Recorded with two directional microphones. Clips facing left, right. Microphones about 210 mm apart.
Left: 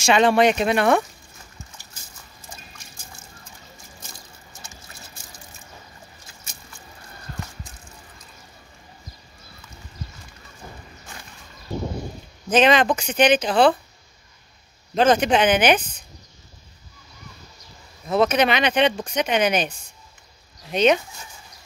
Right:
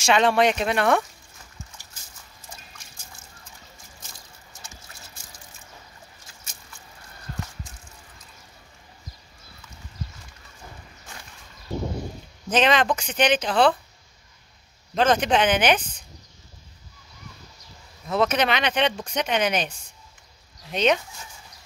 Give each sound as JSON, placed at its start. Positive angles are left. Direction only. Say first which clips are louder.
{"t": 0.0, "sound": "speech", "louder": "left 3 dB", "side_deg": 5}
{"t": 12.4, "sound": "speech", "louder": "left 4 dB", "side_deg": 5}
{"t": 15.0, "sound": "speech", "louder": "left 3 dB", "side_deg": 5}
{"t": 18.0, "sound": "speech", "louder": "left 3 dB", "side_deg": 5}
{"t": 20.7, "sound": "speech", "louder": "left 4 dB", "side_deg": 5}